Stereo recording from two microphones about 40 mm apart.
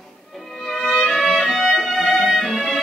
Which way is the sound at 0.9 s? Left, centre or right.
Centre.